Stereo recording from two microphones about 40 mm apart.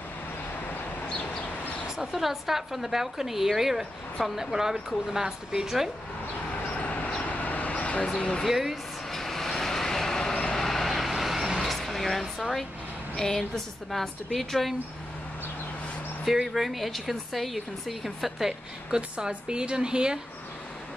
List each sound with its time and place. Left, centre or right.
1.0 s a sound: left
2.0 s a woman's voice: centre
6.5 s vehicle: left
8.2 s speech: left
8.5 s a woman's voice: centre
9.1 s vehicle: centre
11.6 s a sound: centre
13.9 s a woman's voice: centre
14.3 s speech: centre
16.5 s speech: centre
18.9 s a woman's voice: right